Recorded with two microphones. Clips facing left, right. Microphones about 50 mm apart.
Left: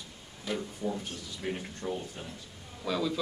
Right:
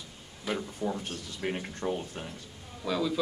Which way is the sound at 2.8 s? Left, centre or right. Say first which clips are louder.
Right 1 dB; centre.